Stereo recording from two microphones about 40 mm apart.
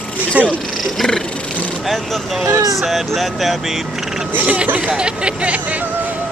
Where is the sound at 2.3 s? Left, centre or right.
Centre.